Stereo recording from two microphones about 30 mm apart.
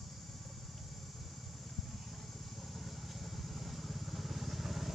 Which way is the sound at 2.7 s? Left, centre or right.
Centre.